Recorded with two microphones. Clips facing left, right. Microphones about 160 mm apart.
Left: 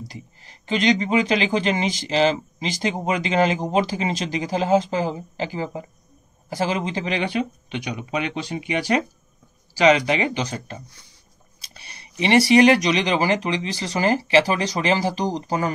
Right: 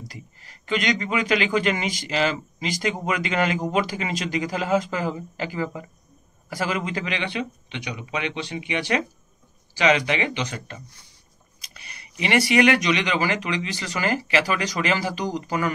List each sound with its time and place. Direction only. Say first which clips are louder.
0.1 s speech: left 3 dB; 30° left (ahead or behind)